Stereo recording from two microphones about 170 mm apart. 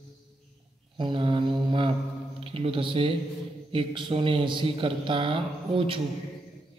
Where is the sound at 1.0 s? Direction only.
30° right (ahead or behind).